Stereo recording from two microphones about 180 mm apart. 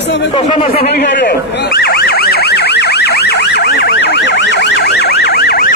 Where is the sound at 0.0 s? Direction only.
75° left (ahead or behind).